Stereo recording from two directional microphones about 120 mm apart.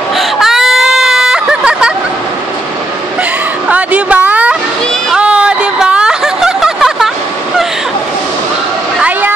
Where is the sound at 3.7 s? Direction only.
10° right (ahead or behind).